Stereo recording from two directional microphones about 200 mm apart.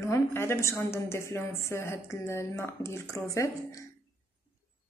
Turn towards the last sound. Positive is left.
turn(degrees=15)  # may be behind; listen again after turning